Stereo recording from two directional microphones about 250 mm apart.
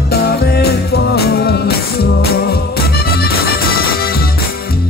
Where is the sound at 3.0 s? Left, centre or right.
Left.